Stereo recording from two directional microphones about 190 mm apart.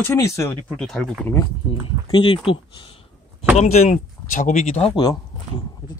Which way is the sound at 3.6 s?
35° left (ahead or behind).